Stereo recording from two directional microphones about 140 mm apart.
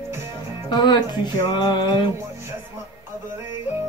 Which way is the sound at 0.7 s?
30° left (ahead or behind).